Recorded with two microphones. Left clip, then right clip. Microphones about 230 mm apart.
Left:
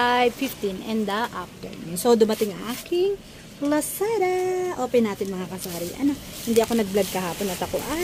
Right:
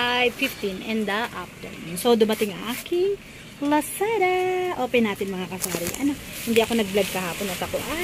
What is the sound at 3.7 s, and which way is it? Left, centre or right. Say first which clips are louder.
Speech: right 1 dB; centre.